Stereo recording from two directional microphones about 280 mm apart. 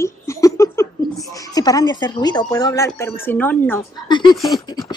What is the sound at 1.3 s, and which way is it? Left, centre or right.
Speech, centre.